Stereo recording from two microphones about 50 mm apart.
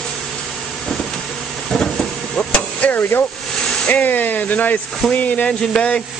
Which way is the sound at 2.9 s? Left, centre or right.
Left.